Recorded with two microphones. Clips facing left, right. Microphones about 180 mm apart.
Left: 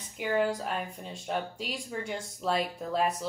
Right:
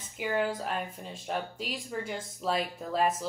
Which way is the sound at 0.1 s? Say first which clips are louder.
Left 2 dB; centre (ahead or behind).